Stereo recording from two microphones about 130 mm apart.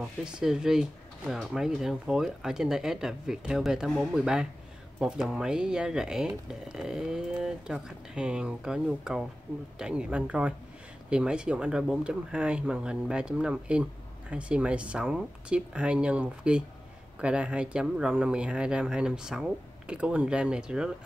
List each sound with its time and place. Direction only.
0.0 s speech: 5° right (ahead or behind)